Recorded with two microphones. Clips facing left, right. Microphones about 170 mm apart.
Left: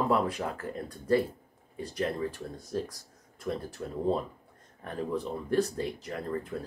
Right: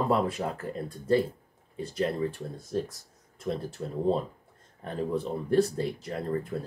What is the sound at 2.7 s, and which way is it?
Speech, 25° right (ahead or behind).